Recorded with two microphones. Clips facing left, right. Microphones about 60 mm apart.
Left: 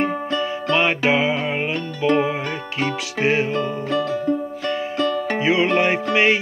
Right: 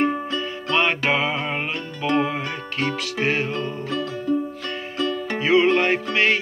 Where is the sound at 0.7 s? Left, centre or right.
Centre.